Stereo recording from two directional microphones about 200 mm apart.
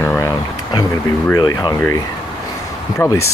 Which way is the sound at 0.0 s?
10° left (ahead or behind).